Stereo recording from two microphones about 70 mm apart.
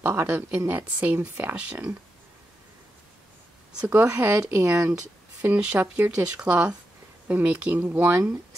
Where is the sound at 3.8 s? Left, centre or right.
Right.